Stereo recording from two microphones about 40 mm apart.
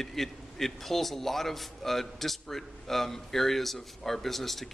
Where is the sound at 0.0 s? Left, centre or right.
Centre.